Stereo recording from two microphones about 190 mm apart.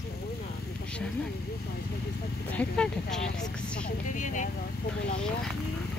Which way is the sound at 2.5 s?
5° left (ahead or behind).